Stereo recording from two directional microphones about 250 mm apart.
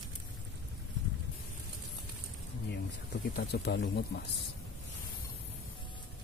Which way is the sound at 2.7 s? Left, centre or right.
Left.